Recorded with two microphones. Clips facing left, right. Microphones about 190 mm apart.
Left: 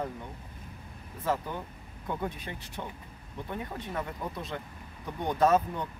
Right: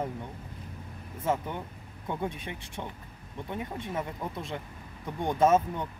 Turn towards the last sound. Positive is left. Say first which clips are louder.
# right 1 dB
turn(degrees=-20)  # may be behind; listen again after turning